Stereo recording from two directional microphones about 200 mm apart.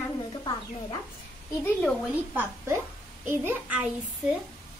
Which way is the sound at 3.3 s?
10° right (ahead or behind).